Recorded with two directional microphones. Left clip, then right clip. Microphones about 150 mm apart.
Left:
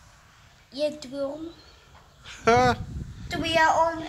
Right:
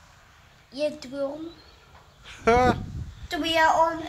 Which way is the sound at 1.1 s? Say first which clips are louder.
Right 1 dB; 10° right (ahead or behind).